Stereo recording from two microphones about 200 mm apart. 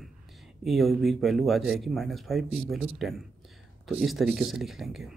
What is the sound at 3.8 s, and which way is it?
Speech, centre (ahead or behind).